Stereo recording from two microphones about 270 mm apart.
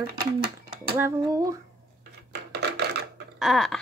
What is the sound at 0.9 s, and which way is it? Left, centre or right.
Speech, centre.